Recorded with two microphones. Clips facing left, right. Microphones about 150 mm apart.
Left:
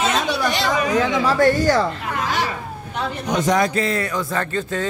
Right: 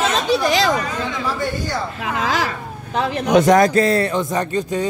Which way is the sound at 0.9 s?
90° left.